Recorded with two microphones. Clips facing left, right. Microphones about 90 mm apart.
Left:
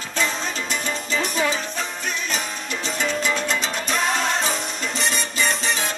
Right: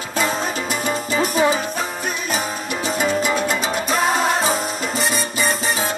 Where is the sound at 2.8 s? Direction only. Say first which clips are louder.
Right 4 dB; 10° right (ahead or behind).